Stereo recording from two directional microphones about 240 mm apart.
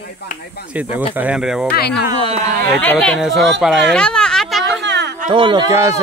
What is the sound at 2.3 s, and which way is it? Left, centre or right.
Speech, right.